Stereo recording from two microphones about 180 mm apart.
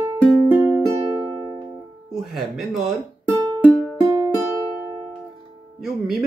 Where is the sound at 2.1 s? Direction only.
Centre (ahead or behind).